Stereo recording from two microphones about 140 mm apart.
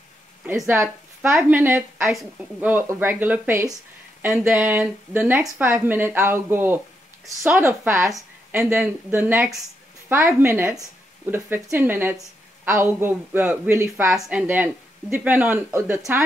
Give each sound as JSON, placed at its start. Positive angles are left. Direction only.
{"t": 0.7, "sound": "a woman's voice", "side_deg": -20}
{"t": 4.3, "sound": "a woman's voice", "side_deg": -5}